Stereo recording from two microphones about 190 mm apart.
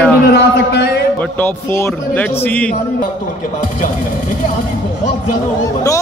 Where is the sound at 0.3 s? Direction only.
60° left (ahead or behind).